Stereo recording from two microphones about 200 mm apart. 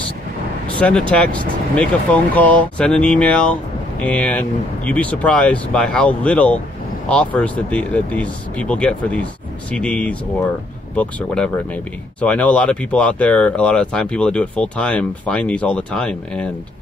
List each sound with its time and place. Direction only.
0.7 s speech: 5° left (ahead or behind)